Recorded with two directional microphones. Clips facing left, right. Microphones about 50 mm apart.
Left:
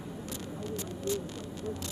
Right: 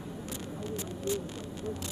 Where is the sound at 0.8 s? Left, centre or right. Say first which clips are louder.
Even; right.